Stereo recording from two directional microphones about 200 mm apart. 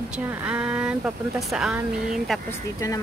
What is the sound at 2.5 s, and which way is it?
Speech, 15° left (ahead or behind).